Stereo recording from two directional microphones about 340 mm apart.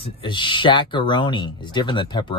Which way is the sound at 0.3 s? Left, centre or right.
Centre.